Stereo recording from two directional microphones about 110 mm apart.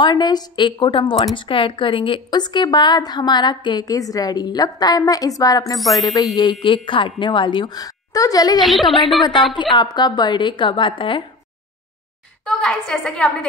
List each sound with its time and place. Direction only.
0.0 s a woman's voice: 40° left (ahead or behind)
8.5 s speech: centre (ahead or behind)
9.5 s a woman's voice: 45° left (ahead or behind)
12.4 s a woman's voice: 5° left (ahead or behind)